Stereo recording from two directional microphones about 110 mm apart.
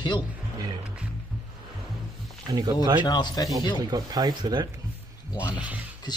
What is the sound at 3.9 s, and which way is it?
Speech, 35° right (ahead or behind).